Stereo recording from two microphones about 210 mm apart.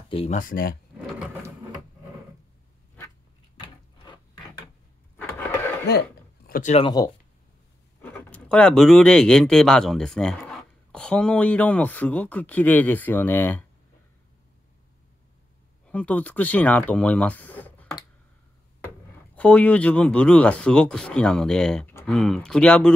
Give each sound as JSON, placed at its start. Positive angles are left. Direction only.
{"t": 0.1, "sound": "speech", "side_deg": 30}
{"t": 3.6, "sound": "a sound", "side_deg": 20}
{"t": 5.9, "sound": "speech", "side_deg": 50}
{"t": 8.0, "sound": "speech", "side_deg": 5}
{"t": 15.9, "sound": "speech", "side_deg": 5}
{"t": 19.3, "sound": "speech", "side_deg": 5}